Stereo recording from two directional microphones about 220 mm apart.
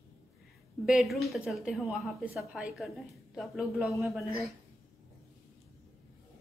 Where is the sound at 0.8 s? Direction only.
Centre (ahead or behind).